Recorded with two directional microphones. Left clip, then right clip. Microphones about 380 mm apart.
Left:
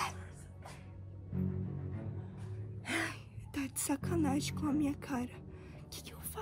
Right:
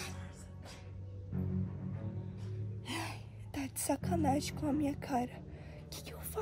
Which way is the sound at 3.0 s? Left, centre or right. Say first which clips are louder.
Left 5 dB; centre.